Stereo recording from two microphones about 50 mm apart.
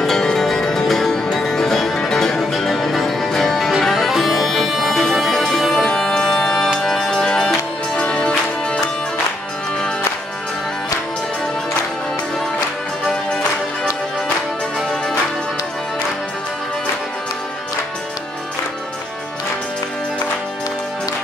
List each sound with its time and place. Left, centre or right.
0.0 s music: centre